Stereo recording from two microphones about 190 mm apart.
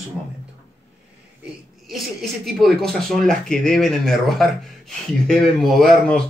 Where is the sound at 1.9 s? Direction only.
Centre (ahead or behind).